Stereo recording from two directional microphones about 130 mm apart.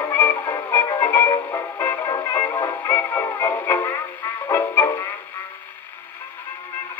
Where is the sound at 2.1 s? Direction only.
30° left (ahead or behind).